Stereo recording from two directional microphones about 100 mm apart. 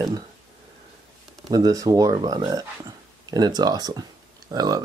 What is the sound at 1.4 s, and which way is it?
Speech, 40° right (ahead or behind).